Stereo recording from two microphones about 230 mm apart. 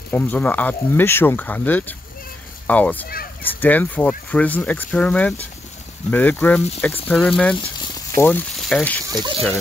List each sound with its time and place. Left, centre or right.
0.1 s speech: centre
9.0 s speech: centre